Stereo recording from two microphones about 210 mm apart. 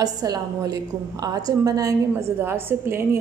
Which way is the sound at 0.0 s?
15° right (ahead or behind).